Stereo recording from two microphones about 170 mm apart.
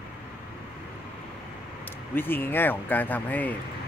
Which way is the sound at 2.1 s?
10° left (ahead or behind).